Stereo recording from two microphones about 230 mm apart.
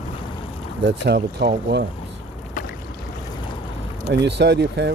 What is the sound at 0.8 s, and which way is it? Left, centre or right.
Speech, right.